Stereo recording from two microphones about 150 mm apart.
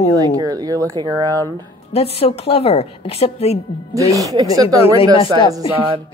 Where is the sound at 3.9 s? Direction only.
20° right (ahead or behind).